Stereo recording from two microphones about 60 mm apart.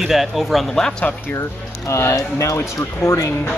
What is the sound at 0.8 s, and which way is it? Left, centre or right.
Speech, centre.